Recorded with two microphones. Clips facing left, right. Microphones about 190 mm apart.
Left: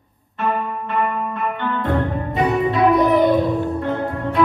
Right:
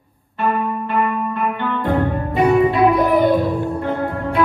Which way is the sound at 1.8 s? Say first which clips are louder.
Right 3 dB; centre (ahead or behind).